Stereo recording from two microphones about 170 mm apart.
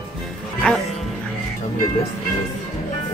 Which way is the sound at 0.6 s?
5° left (ahead or behind).